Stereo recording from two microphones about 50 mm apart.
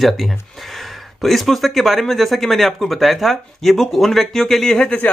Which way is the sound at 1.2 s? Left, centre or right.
Centre.